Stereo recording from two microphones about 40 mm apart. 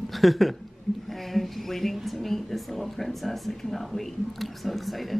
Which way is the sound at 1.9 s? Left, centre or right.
Centre.